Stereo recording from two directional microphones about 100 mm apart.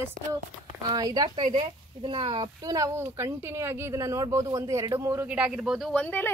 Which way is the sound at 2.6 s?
35° right (ahead or behind).